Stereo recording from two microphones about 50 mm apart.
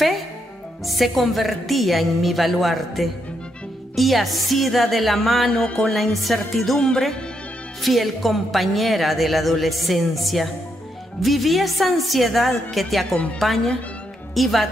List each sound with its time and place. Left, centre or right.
0.8 s a woman's voice: centre
5.5 s music: left
6.2 s a woman's voice: centre
7.8 s a woman's voice: centre